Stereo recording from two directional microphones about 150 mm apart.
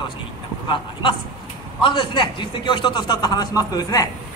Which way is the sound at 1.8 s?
35° left (ahead or behind).